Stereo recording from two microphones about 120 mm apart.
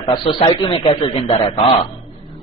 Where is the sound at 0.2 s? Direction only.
45° left (ahead or behind).